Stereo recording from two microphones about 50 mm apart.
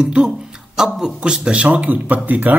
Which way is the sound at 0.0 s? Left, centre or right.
Right.